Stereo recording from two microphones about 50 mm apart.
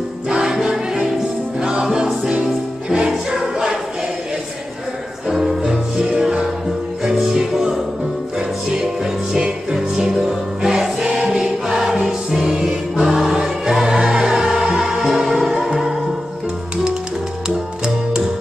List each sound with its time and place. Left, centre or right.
0.3 s music: centre
5.3 s music: centre
9.3 s music: centre